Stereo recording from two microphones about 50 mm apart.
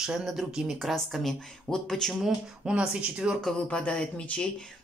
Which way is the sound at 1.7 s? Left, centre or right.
Centre.